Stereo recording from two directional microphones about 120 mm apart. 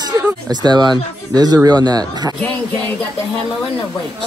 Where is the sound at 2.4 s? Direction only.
10° left (ahead or behind).